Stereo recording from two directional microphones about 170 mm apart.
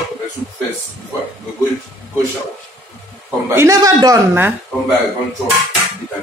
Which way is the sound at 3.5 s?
15° right (ahead or behind).